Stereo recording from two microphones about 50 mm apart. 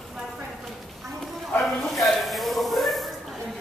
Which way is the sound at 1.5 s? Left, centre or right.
Centre.